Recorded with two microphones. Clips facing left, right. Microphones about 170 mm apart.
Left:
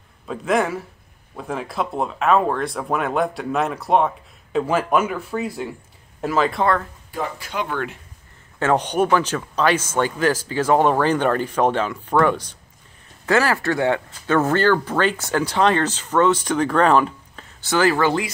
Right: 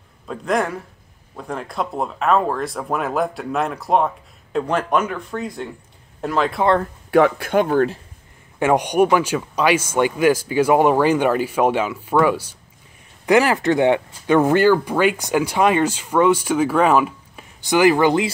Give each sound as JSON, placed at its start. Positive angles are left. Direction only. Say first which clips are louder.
{"t": 0.3, "sound": "speech", "louder": "left 1 dB", "side_deg": 0}
{"t": 7.1, "sound": "speech", "louder": "right 15 dB", "side_deg": -70}
{"t": 7.7, "sound": "speech", "louder": "right 9 dB", "side_deg": -35}
{"t": 8.5, "sound": "speech", "louder": "right 3 dB", "side_deg": -15}